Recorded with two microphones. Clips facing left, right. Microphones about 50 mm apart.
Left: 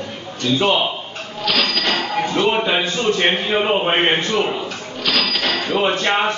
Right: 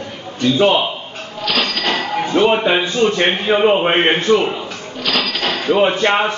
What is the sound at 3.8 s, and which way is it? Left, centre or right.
Speech, right.